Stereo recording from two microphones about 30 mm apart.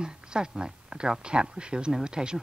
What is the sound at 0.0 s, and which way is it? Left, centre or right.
Speech, right.